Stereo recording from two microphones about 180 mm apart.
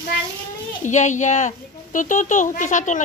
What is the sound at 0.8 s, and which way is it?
A woman's voice, 40° left (ahead or behind).